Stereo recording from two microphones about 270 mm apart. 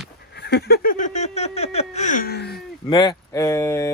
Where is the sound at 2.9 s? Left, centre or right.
Centre.